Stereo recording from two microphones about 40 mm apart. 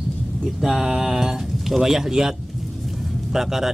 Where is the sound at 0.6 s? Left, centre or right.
Centre.